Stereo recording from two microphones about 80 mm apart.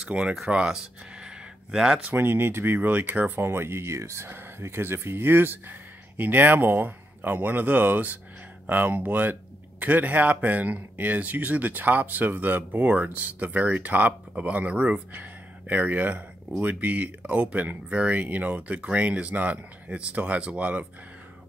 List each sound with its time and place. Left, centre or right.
0.1 s speech: centre
2.0 s speech: right